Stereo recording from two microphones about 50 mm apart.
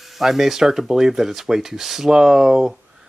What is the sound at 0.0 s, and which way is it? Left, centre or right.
Speech, centre.